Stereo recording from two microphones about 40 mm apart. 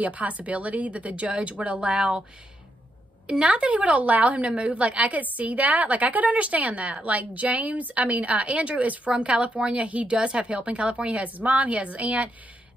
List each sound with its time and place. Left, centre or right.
0.0 s a woman's voice: right
3.3 s a woman's voice: right
9.1 s a woman's voice: right